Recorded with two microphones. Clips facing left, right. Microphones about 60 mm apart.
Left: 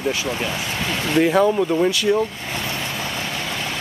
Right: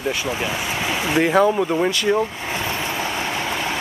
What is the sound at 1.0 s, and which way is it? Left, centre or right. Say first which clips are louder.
Speech: even; centre.